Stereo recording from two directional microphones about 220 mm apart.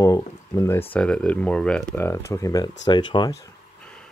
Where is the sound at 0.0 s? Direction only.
15° left (ahead or behind).